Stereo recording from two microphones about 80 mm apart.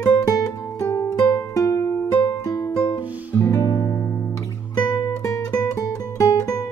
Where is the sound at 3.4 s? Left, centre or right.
Left.